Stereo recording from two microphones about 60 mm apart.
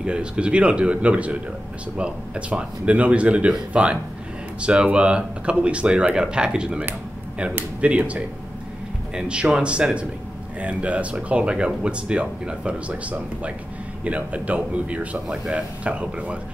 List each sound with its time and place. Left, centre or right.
0.0 s speech: centre